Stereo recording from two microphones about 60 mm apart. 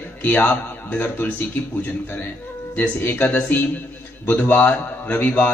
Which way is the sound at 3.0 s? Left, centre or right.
Left.